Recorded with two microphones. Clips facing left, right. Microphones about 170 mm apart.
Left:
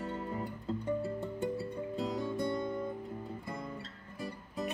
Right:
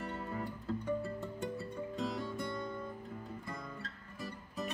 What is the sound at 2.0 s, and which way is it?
Music, 20° left (ahead or behind).